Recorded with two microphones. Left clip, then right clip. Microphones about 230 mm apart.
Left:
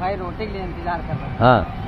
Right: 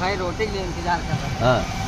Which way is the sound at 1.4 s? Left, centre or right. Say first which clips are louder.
Left 5 dB; left.